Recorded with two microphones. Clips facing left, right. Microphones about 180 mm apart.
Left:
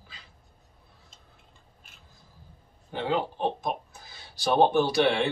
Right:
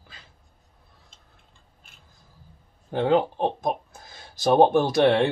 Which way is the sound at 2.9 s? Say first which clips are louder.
Right 7 dB; 50° right (ahead or behind).